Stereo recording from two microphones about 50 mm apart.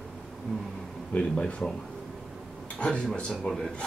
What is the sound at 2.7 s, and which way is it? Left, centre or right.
Speech, left.